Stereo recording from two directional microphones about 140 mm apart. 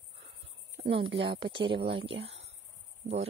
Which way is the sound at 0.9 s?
40° right (ahead or behind).